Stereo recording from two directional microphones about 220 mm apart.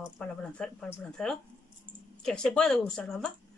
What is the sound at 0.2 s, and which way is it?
A woman's voice, 5° left (ahead or behind).